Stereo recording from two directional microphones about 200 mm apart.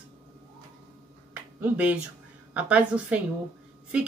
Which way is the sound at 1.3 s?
10° right (ahead or behind).